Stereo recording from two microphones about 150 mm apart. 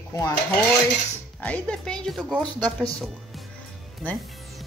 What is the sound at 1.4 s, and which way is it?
Speech, 5° left (ahead or behind).